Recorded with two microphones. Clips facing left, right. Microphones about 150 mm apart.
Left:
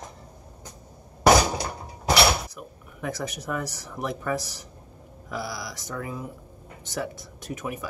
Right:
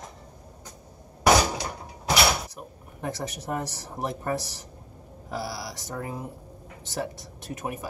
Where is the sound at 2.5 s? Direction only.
30° right (ahead or behind).